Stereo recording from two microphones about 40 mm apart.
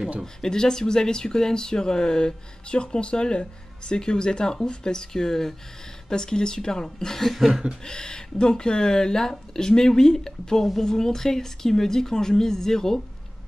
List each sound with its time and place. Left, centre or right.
0.2 s speech: centre
7.2 s chuckle: centre
7.8 s speech: left